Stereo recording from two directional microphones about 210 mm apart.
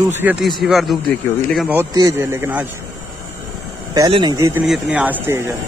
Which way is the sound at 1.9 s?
15° right (ahead or behind).